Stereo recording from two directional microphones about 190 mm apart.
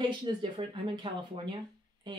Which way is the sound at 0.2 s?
25° right (ahead or behind).